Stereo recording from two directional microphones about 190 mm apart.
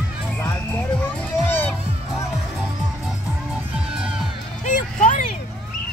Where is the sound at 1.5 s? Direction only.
10° left (ahead or behind).